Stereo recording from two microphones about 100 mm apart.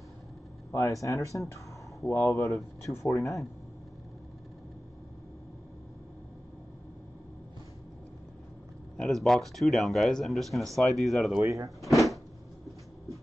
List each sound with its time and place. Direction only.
0.7 s speech: 30° left (ahead or behind)
2.0 s speech: 20° left (ahead or behind)
8.9 s speech: 5° left (ahead or behind)
11.3 s speech: 35° right (ahead or behind)
11.8 s a sound: centre (ahead or behind)